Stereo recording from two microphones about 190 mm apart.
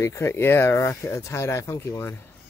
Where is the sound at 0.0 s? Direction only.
15° left (ahead or behind).